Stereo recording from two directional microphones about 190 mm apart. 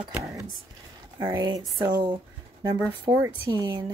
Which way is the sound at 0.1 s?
15° right (ahead or behind).